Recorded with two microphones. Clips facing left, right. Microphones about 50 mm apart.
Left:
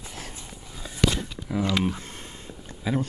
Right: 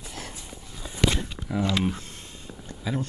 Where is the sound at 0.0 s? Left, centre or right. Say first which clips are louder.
Right 1 dB; left.